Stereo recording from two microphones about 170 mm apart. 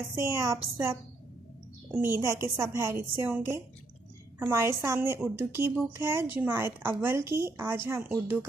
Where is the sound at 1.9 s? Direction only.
15° right (ahead or behind).